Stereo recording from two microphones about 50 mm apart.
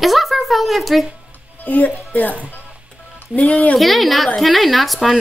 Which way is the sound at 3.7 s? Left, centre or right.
Centre.